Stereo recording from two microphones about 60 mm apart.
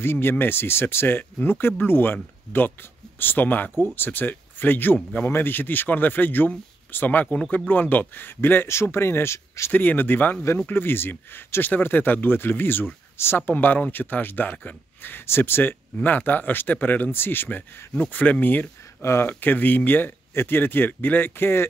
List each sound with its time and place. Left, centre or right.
0.0 s speech: left
7.3 s speech: centre
7.6 s speech: left
9.7 s speech: left
18.9 s speech: left
19.2 s speech: left